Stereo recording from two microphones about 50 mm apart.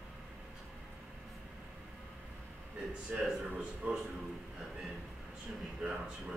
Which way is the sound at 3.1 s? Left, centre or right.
Centre.